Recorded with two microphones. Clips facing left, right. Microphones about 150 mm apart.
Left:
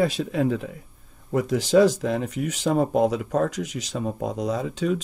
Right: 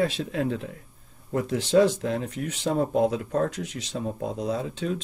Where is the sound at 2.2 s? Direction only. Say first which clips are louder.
Left 3 dB; 10° left (ahead or behind).